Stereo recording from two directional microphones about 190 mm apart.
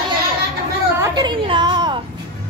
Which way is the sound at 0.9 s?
20° right (ahead or behind).